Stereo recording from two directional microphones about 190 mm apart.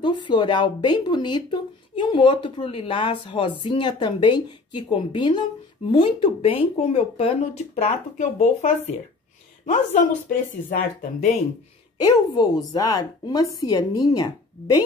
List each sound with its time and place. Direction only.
0.0 s speech: 25° left (ahead or behind)
12.3 s speech: 20° left (ahead or behind)